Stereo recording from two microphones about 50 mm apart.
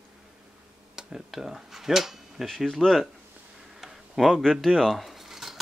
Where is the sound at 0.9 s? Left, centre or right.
Centre.